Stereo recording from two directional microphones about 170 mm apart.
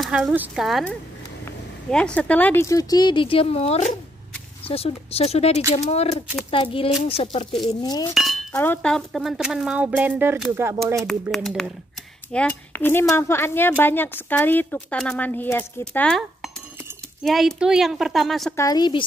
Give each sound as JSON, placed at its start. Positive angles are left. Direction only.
{"t": 0.0, "sound": "speech", "side_deg": -5}
{"t": 7.8, "sound": "speech", "side_deg": 25}
{"t": 8.1, "sound": "speech", "side_deg": 0}
{"t": 11.3, "sound": "a woman's voice", "side_deg": 0}
{"t": 18.6, "sound": "speech", "side_deg": 25}